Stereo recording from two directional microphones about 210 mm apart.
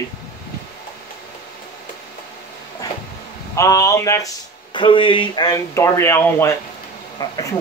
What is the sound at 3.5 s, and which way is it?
Speech, 15° left (ahead or behind).